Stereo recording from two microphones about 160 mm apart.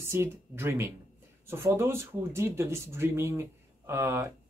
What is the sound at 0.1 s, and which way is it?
Speech, 15° right (ahead or behind).